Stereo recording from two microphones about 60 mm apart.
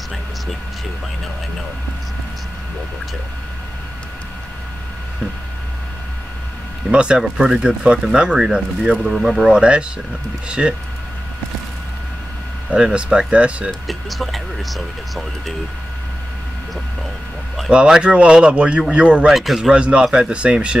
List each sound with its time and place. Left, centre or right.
6.9 s speech: centre
12.6 s speech: centre
13.7 s speech: centre
17.6 s speech: centre
19.3 s speech: centre
19.7 s speech: centre